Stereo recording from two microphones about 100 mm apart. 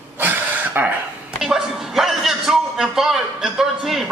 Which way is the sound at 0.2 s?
20° right (ahead or behind).